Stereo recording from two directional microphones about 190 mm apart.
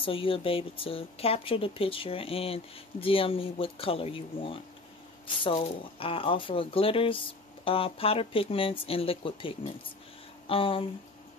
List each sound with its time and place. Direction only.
0.0 s speech: 30° left (ahead or behind)